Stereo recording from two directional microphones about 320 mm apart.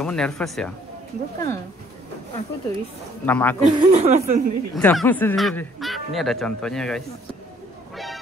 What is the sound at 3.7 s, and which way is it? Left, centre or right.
Speech, right.